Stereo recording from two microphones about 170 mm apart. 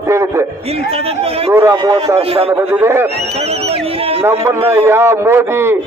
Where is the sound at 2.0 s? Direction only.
35° right (ahead or behind).